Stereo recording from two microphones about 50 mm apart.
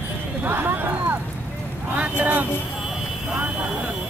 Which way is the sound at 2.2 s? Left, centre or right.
Right.